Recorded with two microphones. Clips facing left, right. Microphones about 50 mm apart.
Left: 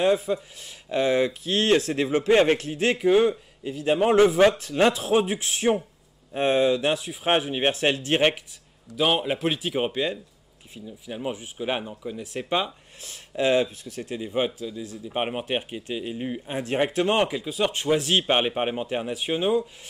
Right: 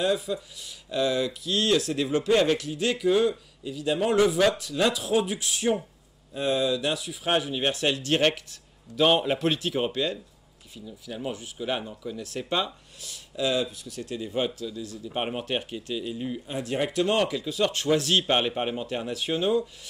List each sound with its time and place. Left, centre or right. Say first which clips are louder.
0.0 s speech: left 4 dB; left
8.5 s speech: left 1 dB; centre
13.0 s speech: left 4 dB; left